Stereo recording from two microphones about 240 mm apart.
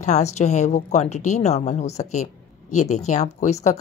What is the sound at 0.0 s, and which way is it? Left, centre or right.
Speech, left.